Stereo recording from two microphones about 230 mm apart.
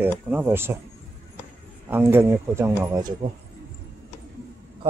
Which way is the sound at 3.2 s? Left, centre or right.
Right.